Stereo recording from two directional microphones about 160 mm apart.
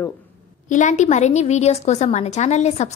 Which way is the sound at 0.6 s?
50° left (ahead or behind).